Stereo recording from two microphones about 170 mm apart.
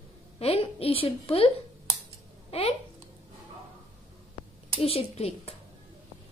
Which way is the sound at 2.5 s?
35° left (ahead or behind).